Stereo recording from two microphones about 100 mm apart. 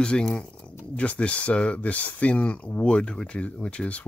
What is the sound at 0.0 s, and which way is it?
Speech, 10° left (ahead or behind).